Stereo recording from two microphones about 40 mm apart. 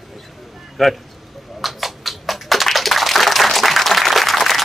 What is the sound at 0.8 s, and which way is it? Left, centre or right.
Speech, centre.